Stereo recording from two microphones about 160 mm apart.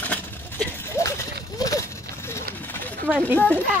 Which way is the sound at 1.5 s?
20° left (ahead or behind).